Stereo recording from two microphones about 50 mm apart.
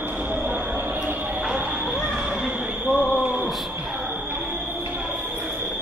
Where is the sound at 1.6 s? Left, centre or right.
Right.